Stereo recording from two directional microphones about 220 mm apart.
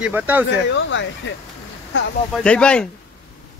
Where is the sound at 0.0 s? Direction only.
10° right (ahead or behind).